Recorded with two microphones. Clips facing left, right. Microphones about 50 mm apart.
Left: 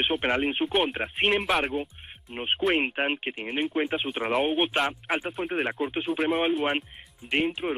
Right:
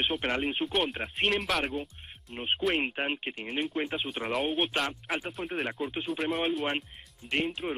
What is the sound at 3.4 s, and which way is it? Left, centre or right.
Speech, centre.